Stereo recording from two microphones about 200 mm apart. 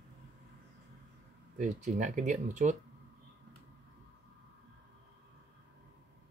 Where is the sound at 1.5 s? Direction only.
40° right (ahead or behind).